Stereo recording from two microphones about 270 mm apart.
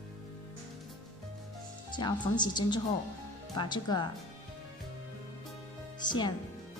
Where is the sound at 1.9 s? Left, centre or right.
Centre.